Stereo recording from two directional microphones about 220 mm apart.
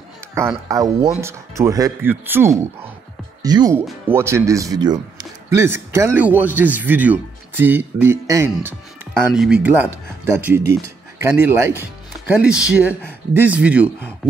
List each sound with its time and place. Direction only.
0.7 s speech: 15° right (ahead or behind)